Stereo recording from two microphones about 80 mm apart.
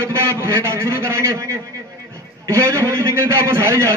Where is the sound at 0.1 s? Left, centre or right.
Right.